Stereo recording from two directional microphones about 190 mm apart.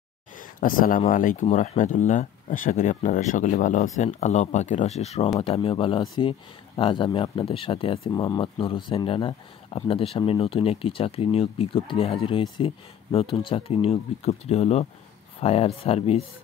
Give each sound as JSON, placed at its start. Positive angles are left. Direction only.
{"t": 0.6, "sound": "speech", "side_deg": 45}